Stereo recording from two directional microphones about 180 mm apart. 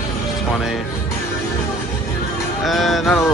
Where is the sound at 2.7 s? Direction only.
Centre (ahead or behind).